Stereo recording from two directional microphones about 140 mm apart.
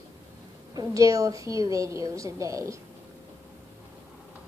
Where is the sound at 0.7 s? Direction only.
25° right (ahead or behind).